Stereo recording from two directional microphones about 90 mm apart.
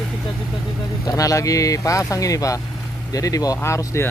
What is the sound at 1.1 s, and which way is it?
Speech, 40° left (ahead or behind).